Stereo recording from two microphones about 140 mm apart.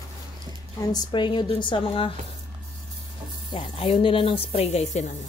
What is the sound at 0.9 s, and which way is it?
Speech, 35° left (ahead or behind).